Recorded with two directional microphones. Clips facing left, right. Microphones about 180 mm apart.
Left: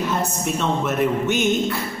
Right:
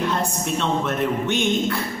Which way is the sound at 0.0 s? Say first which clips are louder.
Even; 5° left (ahead or behind).